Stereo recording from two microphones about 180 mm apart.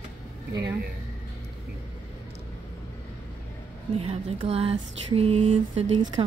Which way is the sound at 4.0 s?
35° right (ahead or behind).